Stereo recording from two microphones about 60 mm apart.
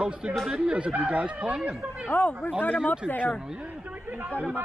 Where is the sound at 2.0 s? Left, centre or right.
Left.